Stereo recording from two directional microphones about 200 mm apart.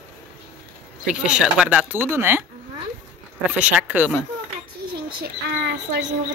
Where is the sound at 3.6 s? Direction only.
10° right (ahead or behind).